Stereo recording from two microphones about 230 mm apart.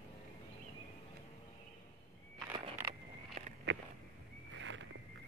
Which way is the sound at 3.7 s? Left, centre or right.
Right.